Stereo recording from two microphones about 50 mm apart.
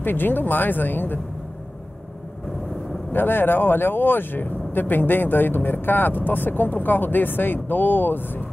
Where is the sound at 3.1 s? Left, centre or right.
Left.